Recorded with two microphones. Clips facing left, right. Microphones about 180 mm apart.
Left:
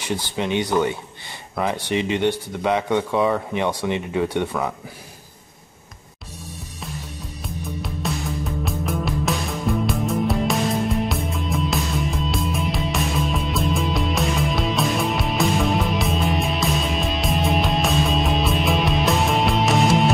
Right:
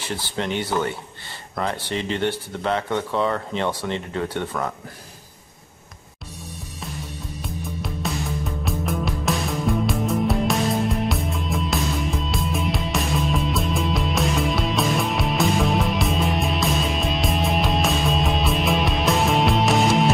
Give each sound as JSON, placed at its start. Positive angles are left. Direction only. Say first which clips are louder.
{"t": 0.0, "sound": "speech", "louder": "left 2 dB", "side_deg": 15}
{"t": 7.4, "sound": "music", "louder": "left 1 dB", "side_deg": 0}